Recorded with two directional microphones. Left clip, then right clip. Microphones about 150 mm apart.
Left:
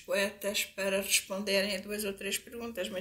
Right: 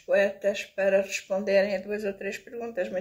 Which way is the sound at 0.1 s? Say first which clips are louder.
Right 8 dB; 10° left (ahead or behind).